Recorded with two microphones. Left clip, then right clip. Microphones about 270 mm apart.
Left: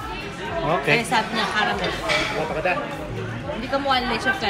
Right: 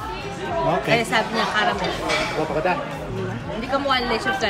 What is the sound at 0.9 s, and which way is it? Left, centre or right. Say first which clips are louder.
Speech: right 1 dB; centre.